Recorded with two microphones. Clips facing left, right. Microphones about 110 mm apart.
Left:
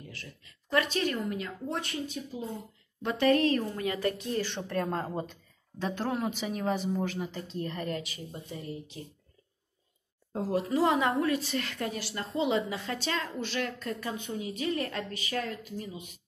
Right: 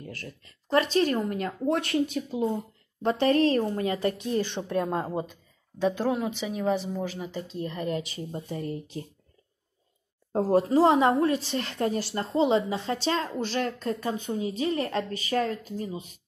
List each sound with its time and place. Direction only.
0.0 s speech: 45° right (ahead or behind)
0.7 s a woman's voice: 35° right (ahead or behind)
1.7 s speech: 70° right (ahead or behind)
3.0 s speech: 35° right (ahead or behind); by 8.0 s 10° right (ahead or behind)
8.0 s a woman's voice: 30° right (ahead or behind)
8.5 s speech: 45° right (ahead or behind)
10.3 s a woman's voice: 40° right (ahead or behind)